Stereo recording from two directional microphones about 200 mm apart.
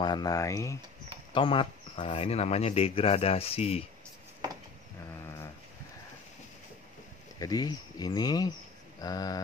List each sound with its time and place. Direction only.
0.0 s speech: 20° left (ahead or behind)
7.3 s speech: 20° left (ahead or behind)